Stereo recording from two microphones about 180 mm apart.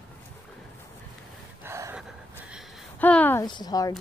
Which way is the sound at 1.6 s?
15° right (ahead or behind).